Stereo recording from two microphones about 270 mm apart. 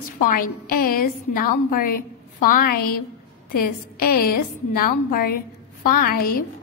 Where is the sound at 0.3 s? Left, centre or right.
Left.